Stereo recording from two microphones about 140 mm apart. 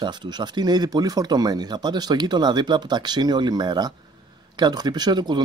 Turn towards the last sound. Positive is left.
turn(degrees=-30)  # may be behind; listen again after turning